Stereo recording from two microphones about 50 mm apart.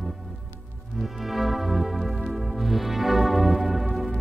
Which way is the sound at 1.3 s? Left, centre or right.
Centre.